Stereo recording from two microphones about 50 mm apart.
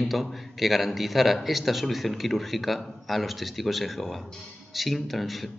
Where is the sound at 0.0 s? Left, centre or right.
Centre.